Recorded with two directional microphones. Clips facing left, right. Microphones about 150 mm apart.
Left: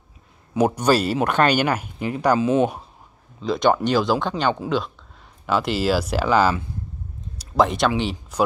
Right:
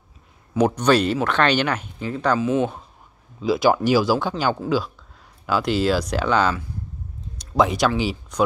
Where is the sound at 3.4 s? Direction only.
5° right (ahead or behind).